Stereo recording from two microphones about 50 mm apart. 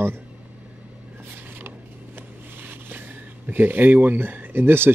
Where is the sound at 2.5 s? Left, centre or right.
Right.